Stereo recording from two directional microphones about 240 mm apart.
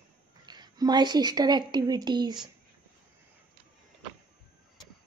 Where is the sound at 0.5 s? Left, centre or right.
Centre.